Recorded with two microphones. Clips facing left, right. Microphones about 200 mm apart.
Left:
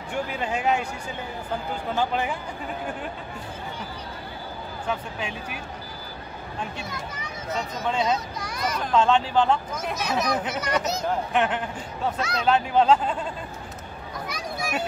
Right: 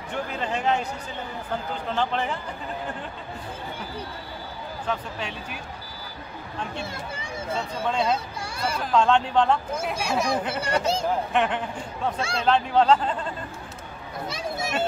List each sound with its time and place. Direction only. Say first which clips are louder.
0.3 s speech: even; 10° left (ahead or behind)
1.9 s speech: left 1 dB; 10° left (ahead or behind)
4.8 s speech: even; 10° left (ahead or behind)
6.8 s speech: right 1 dB; 30° right (ahead or behind)
8.4 s a sound: even; 30° right (ahead or behind)
8.7 s speech: even; centre (ahead or behind)
9.8 s speech: right 1 dB; 10° right (ahead or behind)
10.6 s speech: right 2 dB; 30° right (ahead or behind)
11.3 s speech: even; 5° left (ahead or behind)
12.2 s speech: even; 30° right (ahead or behind)
12.4 s speech: even; 5° left (ahead or behind)
14.2 s a sound: right 2 dB; 25° right (ahead or behind)